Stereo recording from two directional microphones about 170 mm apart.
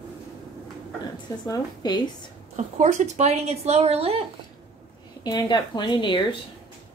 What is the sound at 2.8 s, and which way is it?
A woman's voice, 45° right (ahead or behind).